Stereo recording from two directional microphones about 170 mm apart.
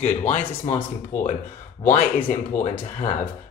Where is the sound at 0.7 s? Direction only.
50° left (ahead or behind).